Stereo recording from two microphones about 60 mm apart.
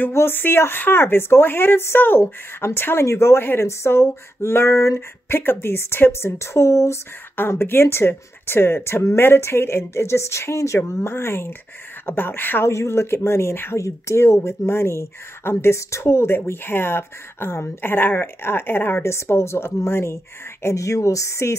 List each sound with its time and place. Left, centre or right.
0.1 s speech: left
2.2 s speech: left
7.3 s speech: left
10.9 s speech: left
12.6 s speech: left
13.7 s speech: left
19.0 s speech: left
20.6 s speech: left